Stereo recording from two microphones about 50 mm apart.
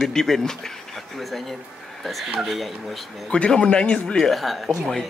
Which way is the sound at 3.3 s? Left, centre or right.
Centre.